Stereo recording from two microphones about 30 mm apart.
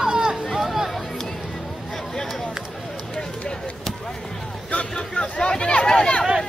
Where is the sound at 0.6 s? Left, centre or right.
Centre.